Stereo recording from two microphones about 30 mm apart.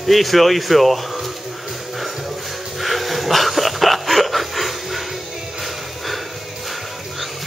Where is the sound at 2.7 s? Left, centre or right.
Centre.